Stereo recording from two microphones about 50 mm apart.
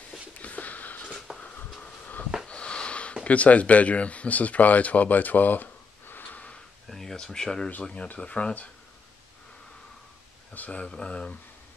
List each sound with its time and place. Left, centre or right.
0.4 s a sound: left
3.3 s speech: left
6.9 s speech: centre; by 8.6 s left
10.5 s speech: left